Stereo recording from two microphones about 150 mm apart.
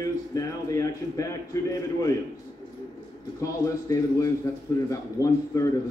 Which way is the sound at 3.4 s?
20° left (ahead or behind).